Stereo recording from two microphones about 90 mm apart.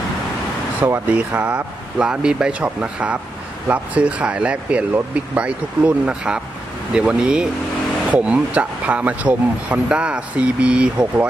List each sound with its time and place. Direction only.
0.8 s speech: 25° right (ahead or behind)
1.1 s speech: 15° right (ahead or behind)